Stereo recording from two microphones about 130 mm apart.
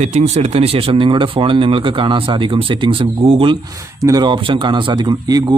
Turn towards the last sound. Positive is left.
turn(degrees=-30)  # may be behind; listen again after turning